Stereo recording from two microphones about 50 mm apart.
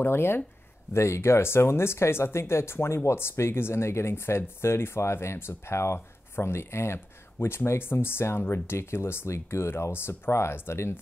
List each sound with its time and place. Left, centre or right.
0.0 s speech: left
0.9 s speech: left